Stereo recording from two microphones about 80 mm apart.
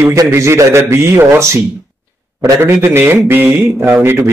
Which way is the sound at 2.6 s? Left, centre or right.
Right.